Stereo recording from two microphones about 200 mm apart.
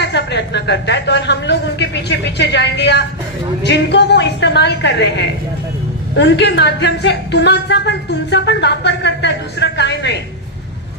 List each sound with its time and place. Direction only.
0.0 s a woman's voice: 60° left (ahead or behind)